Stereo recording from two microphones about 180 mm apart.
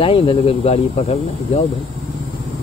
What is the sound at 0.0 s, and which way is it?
Speech, 30° left (ahead or behind).